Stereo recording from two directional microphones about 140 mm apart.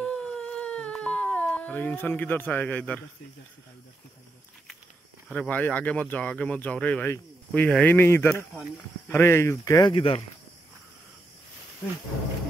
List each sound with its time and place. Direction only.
0.0 s a sound: 10° left (ahead or behind)
5.3 s speech: 10° left (ahead or behind)
9.8 s speech: 40° left (ahead or behind)